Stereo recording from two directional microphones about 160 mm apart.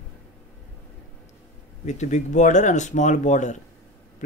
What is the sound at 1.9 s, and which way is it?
Speech, 50° left (ahead or behind).